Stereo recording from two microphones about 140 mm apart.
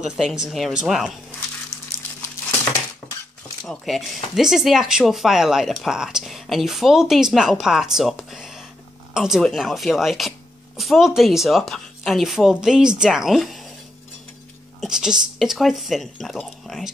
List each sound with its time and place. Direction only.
0.0 s speech: centre (ahead or behind)
3.0 s cutlery: 20° left (ahead or behind)
3.6 s speech: centre (ahead or behind)
14.8 s speech: 5° right (ahead or behind)